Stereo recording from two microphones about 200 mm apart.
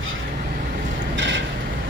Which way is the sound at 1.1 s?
65° right (ahead or behind).